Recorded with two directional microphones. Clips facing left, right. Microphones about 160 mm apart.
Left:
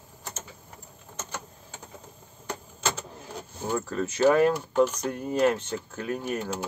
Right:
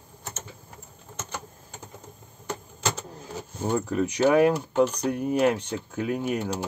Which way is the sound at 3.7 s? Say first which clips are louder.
Right 3 dB; 15° right (ahead or behind).